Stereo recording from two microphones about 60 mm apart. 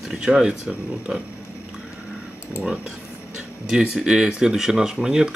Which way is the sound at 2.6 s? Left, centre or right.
Centre.